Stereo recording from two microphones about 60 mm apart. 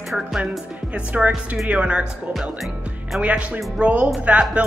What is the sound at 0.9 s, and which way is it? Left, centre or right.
A man's voice, right.